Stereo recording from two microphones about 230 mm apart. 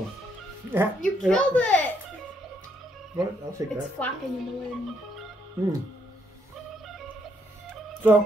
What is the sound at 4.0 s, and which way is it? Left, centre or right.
Speech, centre.